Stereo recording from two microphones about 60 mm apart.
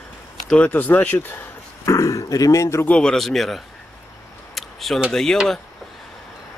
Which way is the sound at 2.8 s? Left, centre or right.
Centre.